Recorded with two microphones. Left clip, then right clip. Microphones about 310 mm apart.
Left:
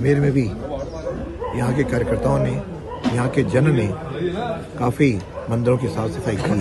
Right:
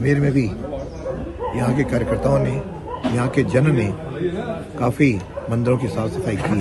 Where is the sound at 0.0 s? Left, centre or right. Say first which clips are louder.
Left 1 dB; centre.